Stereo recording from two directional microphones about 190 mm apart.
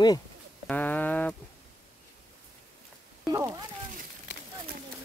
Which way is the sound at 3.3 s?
20° right (ahead or behind).